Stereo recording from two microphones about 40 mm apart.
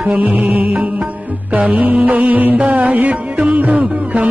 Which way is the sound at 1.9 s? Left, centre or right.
Right.